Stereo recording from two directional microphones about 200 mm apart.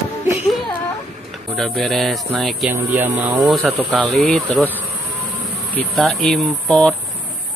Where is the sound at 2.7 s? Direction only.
10° right (ahead or behind).